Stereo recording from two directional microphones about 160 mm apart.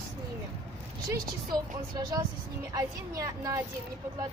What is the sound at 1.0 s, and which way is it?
A woman's voice, 25° right (ahead or behind).